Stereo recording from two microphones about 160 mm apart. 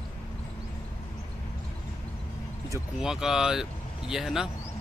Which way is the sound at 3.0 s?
5° right (ahead or behind).